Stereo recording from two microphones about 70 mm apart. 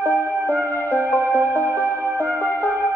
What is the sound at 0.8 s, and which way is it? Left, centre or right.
Music, right.